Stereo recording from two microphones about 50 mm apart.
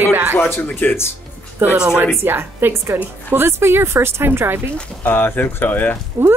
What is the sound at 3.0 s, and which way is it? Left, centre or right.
A woman's voice, right.